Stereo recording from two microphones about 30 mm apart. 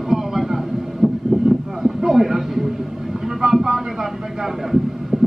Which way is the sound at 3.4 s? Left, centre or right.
Right.